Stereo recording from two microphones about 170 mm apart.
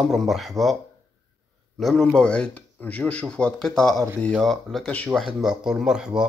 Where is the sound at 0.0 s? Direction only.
Centre (ahead or behind).